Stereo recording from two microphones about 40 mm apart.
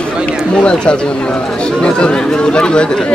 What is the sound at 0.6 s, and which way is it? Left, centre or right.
A man's voice, left.